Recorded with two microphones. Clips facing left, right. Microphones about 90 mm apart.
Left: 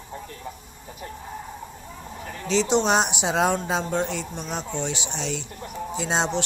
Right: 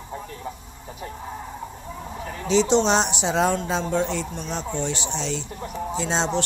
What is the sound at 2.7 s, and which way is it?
Speech, 10° left (ahead or behind).